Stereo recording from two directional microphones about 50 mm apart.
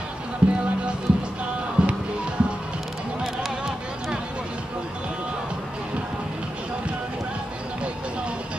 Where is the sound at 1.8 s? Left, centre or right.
Right.